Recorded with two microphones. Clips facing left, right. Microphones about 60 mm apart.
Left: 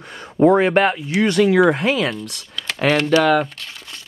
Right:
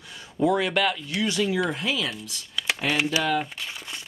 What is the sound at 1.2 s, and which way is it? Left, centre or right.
Speech, left.